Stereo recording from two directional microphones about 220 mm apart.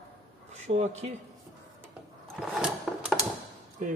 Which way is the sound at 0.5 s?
30° right (ahead or behind).